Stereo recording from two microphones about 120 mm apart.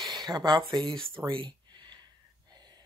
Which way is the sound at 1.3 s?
45° right (ahead or behind).